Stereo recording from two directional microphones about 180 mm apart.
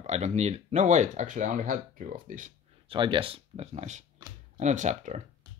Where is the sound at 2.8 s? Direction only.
25° right (ahead or behind).